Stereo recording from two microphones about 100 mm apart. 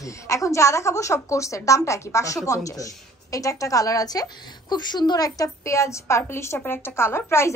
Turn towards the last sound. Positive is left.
turn(degrees=25)  # may be behind; listen again after turning